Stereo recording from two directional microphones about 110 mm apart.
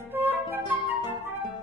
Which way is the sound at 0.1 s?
20° right (ahead or behind).